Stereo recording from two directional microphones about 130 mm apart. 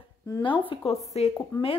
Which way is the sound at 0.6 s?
40° left (ahead or behind).